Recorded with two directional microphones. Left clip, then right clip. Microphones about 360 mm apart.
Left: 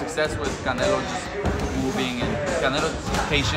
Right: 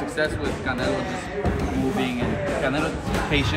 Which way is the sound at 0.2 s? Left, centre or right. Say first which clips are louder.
Even; centre.